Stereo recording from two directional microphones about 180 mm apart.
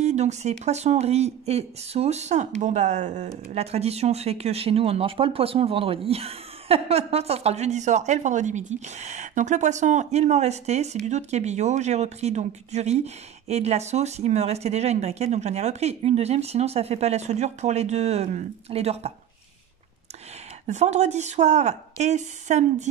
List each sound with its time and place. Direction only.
0.0 s speech: 40° right (ahead or behind)
20.6 s speech: 40° right (ahead or behind)